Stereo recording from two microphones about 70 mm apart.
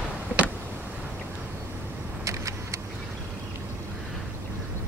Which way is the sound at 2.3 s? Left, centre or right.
Right.